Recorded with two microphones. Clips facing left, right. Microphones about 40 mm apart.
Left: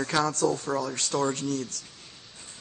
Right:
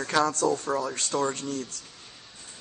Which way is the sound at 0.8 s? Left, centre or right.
Right.